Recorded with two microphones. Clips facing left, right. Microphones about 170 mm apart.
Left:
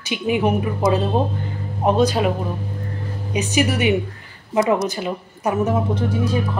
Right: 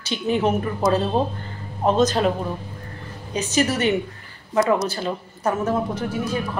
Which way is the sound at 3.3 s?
15° left (ahead or behind).